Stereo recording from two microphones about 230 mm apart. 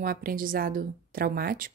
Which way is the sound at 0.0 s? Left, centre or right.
Right.